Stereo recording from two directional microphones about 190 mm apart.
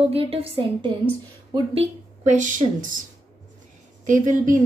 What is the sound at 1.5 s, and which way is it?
A woman's voice, 30° right (ahead or behind).